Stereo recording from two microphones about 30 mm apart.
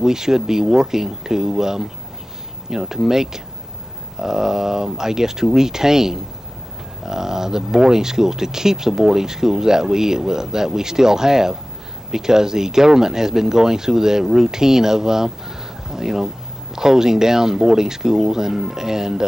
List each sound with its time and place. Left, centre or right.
0.0 s speech: centre